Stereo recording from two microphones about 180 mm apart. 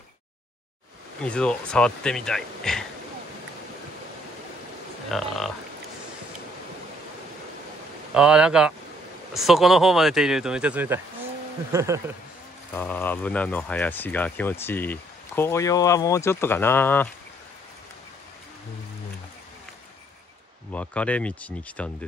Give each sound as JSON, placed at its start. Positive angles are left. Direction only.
{"t": 1.2, "sound": "speech", "side_deg": 5}
{"t": 5.1, "sound": "speech", "side_deg": 0}
{"t": 8.1, "sound": "speech", "side_deg": -5}
{"t": 12.7, "sound": "speech", "side_deg": 10}
{"t": 20.7, "sound": "speech", "side_deg": 5}